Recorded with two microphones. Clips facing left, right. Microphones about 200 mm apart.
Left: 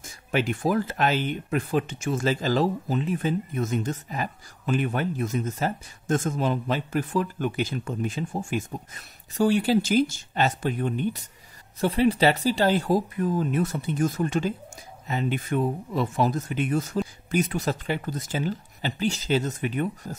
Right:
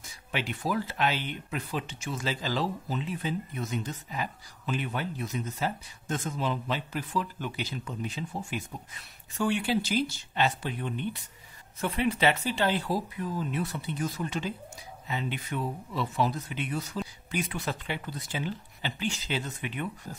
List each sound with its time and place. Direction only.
0.0 s speech: 45° left (ahead or behind)
11.8 s speech: 35° left (ahead or behind)